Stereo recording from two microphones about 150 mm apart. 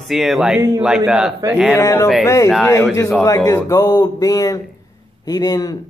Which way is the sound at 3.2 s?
20° left (ahead or behind).